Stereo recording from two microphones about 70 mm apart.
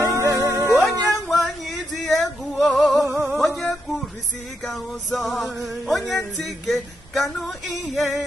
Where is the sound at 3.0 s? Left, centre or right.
Right.